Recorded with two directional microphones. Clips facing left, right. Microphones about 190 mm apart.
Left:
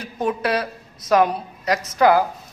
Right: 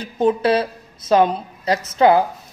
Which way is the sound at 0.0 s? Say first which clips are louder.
Right 6 dB; 30° right (ahead or behind).